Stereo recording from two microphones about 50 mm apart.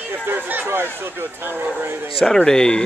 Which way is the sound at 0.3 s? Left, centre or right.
Right.